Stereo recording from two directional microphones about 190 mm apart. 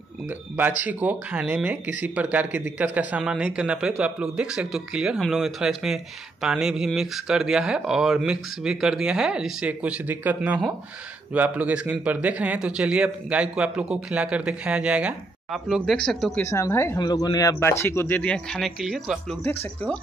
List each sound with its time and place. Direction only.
0.3 s speech: 10° right (ahead or behind)
19.4 s speech: 10° left (ahead or behind)